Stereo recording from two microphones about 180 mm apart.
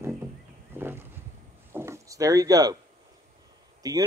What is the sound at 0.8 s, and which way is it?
Wild animals, 10° right (ahead or behind).